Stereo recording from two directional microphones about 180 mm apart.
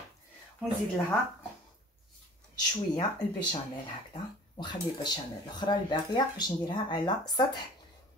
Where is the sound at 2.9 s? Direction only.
25° left (ahead or behind).